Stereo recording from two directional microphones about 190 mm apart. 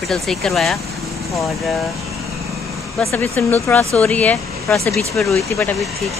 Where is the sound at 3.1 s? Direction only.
15° left (ahead or behind).